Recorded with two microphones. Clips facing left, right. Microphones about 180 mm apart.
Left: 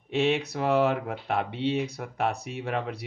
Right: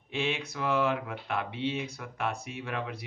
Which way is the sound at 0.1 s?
65° left (ahead or behind).